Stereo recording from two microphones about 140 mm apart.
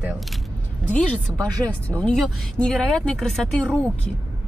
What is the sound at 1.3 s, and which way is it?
Speech, 25° right (ahead or behind).